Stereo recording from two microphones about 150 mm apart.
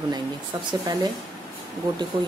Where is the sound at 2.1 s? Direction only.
35° right (ahead or behind).